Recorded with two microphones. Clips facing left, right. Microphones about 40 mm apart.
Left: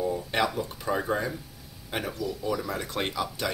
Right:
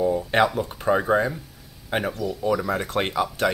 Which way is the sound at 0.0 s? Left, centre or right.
Right.